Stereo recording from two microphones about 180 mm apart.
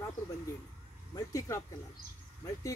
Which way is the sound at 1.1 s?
20° left (ahead or behind).